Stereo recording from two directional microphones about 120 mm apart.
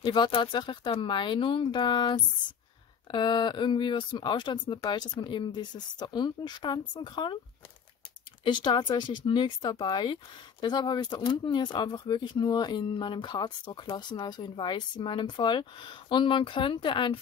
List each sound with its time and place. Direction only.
0.0 s speech: 40° left (ahead or behind)
8.5 s speech: 40° left (ahead or behind)